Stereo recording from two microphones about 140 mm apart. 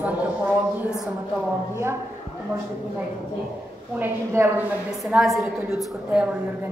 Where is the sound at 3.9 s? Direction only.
15° right (ahead or behind).